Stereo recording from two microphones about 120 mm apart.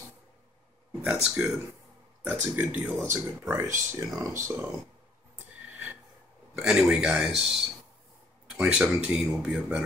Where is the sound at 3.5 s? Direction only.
25° right (ahead or behind).